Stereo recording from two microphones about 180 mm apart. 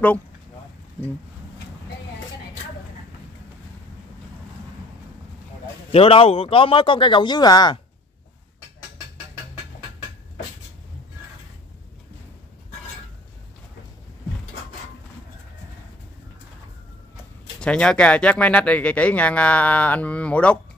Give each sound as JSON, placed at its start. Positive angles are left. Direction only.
{"t": 5.9, "sound": "speech", "side_deg": 30}
{"t": 17.6, "sound": "speech", "side_deg": 5}